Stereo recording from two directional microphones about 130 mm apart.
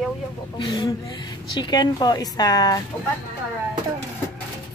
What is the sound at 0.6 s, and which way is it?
Speech, 35° left (ahead or behind).